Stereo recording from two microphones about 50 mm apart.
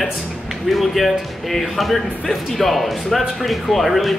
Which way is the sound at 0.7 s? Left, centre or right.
Centre.